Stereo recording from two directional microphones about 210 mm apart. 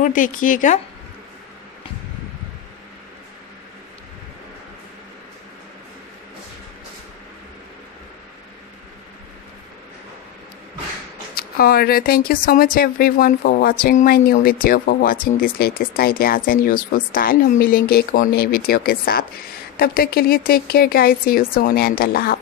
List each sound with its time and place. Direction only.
0.0 s speech: 40° left (ahead or behind)
11.3 s speech: 45° left (ahead or behind)